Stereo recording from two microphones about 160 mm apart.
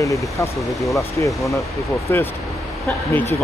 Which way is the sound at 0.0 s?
20° left (ahead or behind).